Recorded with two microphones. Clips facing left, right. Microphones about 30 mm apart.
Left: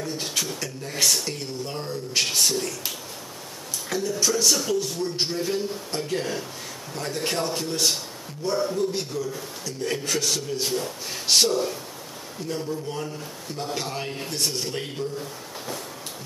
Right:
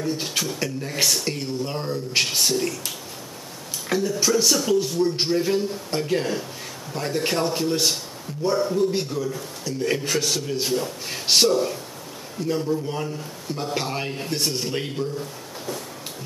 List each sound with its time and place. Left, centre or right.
0.0 s a man's voice: centre
0.6 s a man's voice: centre
4.1 s a man's voice: centre
12.4 s a man's voice: centre
15.1 s speech: centre